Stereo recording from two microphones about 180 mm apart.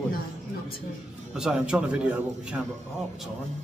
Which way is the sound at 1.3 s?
5° right (ahead or behind).